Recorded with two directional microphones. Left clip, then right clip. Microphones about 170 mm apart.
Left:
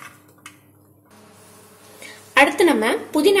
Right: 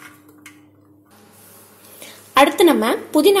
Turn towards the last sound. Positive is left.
turn(degrees=-25)  # may be behind; listen again after turning